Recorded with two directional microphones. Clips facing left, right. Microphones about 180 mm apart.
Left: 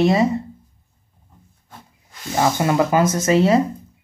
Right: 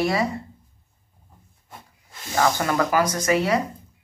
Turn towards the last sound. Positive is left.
turn(degrees=25)  # may be behind; listen again after turning